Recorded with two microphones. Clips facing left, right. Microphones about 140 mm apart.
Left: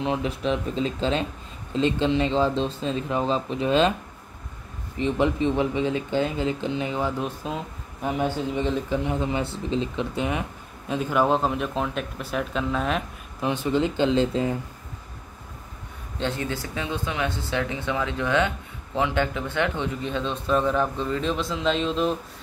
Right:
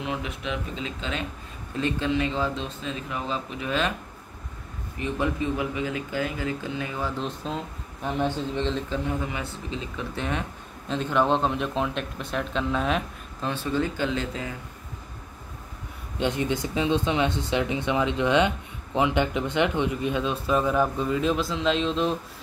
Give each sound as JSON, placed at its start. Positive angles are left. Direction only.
{"t": 0.0, "sound": "speech", "side_deg": 35}
{"t": 1.7, "sound": "speech", "side_deg": 25}
{"t": 4.9, "sound": "speech", "side_deg": 25}
{"t": 10.1, "sound": "speech", "side_deg": 10}
{"t": 13.4, "sound": "speech", "side_deg": 15}
{"t": 16.2, "sound": "speech", "side_deg": -15}